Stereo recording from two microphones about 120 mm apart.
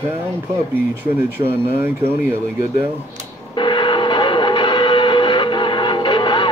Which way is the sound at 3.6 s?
40° left (ahead or behind).